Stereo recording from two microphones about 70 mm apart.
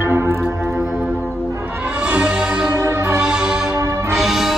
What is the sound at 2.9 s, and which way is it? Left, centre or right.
Music, right.